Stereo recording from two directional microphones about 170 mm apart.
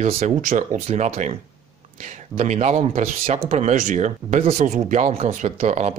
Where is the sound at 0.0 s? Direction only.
40° right (ahead or behind).